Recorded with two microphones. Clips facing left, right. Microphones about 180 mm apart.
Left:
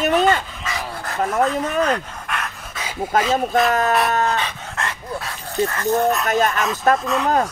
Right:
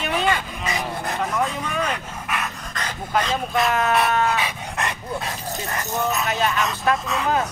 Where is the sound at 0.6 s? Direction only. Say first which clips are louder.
Right 4 dB; 20° right (ahead or behind).